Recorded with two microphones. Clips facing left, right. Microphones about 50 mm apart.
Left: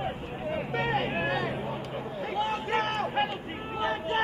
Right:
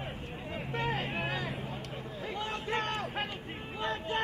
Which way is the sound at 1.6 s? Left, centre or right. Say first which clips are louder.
Left 6 dB; left.